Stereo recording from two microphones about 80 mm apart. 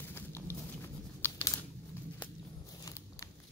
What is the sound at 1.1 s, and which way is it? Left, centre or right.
Tearing, left.